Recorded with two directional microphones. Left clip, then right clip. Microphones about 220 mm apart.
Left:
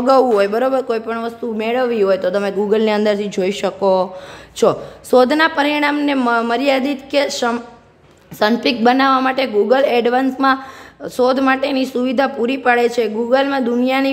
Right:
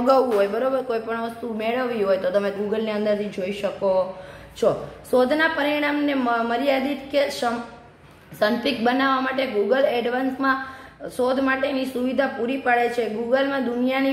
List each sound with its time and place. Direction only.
0.0 s speech: 35° left (ahead or behind); by 14.1 s 50° left (ahead or behind)